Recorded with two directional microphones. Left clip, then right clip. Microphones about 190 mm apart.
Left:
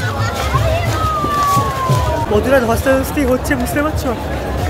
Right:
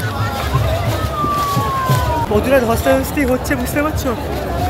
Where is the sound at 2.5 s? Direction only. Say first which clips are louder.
Even; centre (ahead or behind).